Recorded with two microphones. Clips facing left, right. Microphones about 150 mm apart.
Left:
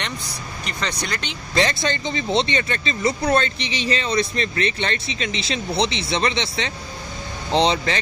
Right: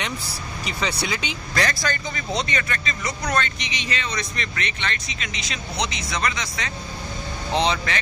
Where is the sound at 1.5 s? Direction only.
25° left (ahead or behind).